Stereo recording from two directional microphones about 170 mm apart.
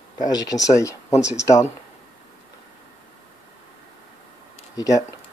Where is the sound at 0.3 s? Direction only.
20° left (ahead or behind).